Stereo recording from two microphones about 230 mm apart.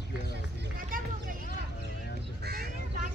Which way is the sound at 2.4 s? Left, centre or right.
Right.